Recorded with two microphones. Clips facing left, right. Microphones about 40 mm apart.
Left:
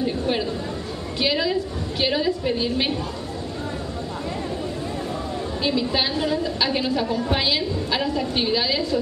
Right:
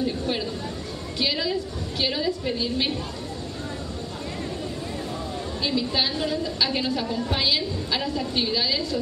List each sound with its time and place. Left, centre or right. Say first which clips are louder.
0.0 s a sound: left 3 dB; centre
1.2 s a woman's voice: left 4 dB; centre
5.6 s a woman's voice: left 2 dB; centre